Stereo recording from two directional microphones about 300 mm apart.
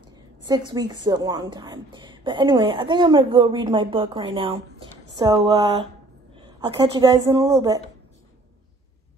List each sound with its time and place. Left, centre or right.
0.0 s a woman's voice: centre